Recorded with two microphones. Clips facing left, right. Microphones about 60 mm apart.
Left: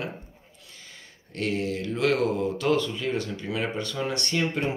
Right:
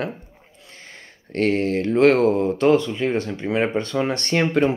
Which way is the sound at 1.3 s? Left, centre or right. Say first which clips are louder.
Right 8 dB; right.